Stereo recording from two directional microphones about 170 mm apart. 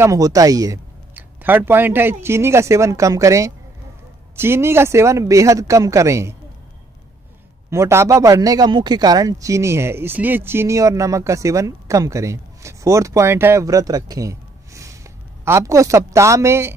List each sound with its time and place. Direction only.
0.0 s speech: 20° right (ahead or behind)
7.7 s speech: 15° right (ahead or behind)